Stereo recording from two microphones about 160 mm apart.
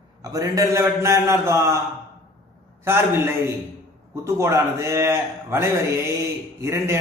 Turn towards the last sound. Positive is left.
turn(degrees=-15)  # may be behind; listen again after turning